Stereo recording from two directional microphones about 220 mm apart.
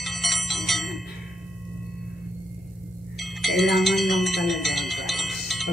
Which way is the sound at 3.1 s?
Centre (ahead or behind).